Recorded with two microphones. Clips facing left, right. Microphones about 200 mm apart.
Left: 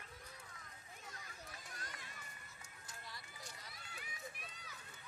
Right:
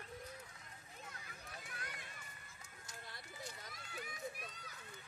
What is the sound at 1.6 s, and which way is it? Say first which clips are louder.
Run: right 3 dB; 60° right (ahead or behind).